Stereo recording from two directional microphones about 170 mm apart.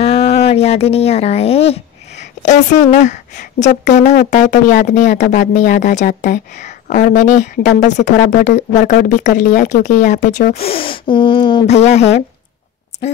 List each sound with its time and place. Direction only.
0.0 s speech: 40° left (ahead or behind)
10.3 s speech: 60° left (ahead or behind)
10.6 s gasp: 35° left (ahead or behind)
11.6 s a woman's voice: 40° left (ahead or behind)